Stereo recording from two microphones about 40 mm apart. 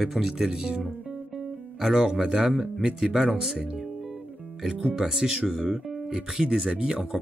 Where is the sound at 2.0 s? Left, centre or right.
Centre.